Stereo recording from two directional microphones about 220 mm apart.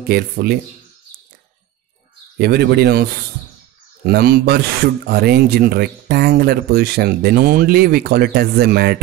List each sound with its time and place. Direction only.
0.1 s speech: 45° right (ahead or behind)
2.3 s speech: 45° right (ahead or behind)